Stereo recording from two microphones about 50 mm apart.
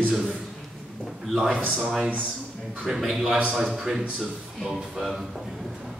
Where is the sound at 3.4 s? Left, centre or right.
Right.